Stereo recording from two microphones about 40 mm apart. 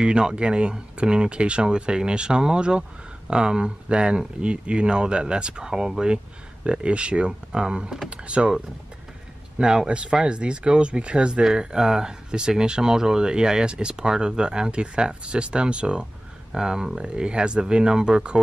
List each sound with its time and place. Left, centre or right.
0.0 s speech: right
6.6 s speech: right
9.6 s speech: centre
16.5 s speech: centre